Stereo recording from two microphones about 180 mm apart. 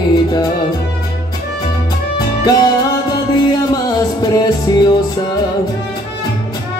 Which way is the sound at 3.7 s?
20° left (ahead or behind).